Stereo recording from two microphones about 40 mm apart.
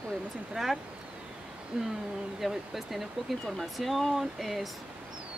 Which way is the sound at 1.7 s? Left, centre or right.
Centre.